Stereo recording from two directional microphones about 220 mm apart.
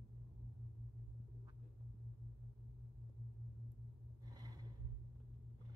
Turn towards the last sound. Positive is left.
turn(degrees=-15)  # may be behind; listen again after turning